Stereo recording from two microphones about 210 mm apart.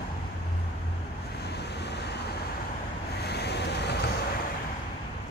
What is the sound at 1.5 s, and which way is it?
Vehicle, 50° left (ahead or behind).